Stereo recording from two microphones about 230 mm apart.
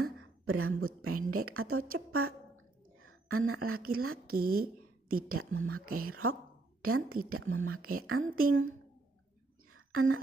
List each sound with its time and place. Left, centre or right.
0.0 s a woman's voice: right
4.3 s a woman's voice: right
5.3 s a woman's voice: right
9.7 s a sound: right